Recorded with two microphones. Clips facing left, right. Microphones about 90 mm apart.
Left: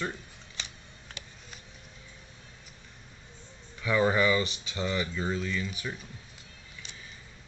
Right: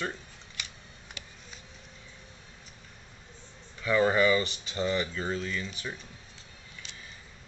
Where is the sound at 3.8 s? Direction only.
5° left (ahead or behind).